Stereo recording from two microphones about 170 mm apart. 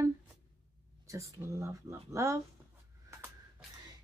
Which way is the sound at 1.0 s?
20° right (ahead or behind).